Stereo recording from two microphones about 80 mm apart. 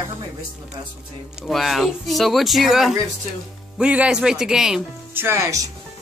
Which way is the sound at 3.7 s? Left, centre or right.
Centre.